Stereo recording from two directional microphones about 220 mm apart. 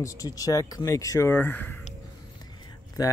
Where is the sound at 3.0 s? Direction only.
15° left (ahead or behind).